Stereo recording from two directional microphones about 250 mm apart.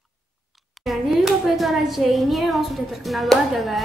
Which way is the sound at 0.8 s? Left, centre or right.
Centre.